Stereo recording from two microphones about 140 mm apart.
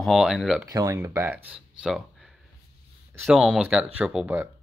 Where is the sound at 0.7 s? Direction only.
20° right (ahead or behind).